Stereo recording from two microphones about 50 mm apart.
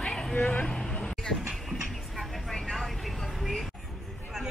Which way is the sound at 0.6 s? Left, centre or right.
Centre.